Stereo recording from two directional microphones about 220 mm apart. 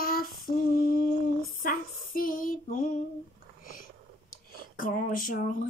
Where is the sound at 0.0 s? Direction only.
40° left (ahead or behind).